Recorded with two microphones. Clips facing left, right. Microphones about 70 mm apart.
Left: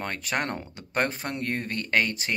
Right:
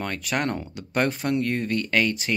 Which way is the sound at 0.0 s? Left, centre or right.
Left.